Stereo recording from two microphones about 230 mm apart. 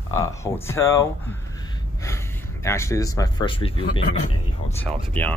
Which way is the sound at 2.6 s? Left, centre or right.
Centre.